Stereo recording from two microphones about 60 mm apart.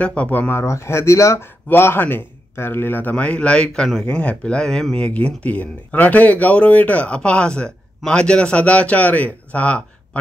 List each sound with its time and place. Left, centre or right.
0.0 s speech: centre
0.5 s speech: left
1.7 s speech: left